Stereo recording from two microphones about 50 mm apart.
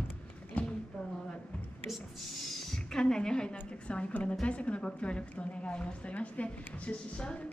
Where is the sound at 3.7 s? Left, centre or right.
Left.